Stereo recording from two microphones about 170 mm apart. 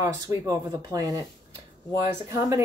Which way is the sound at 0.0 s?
20° right (ahead or behind).